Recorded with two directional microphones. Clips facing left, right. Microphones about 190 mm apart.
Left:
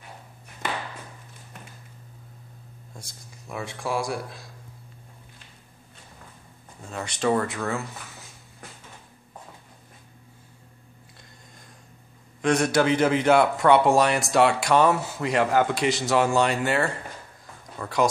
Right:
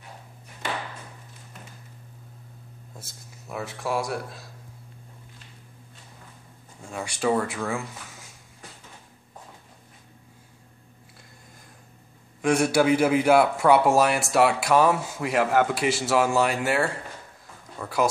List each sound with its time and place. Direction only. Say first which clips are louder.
3.0 s speech: left 1 dB; 5° right (ahead or behind)
6.9 s speech: left 1 dB; 10° right (ahead or behind)
12.4 s speech: right 1 dB; 10° right (ahead or behind)